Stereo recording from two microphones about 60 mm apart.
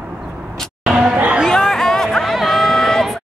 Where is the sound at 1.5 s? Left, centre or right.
Centre.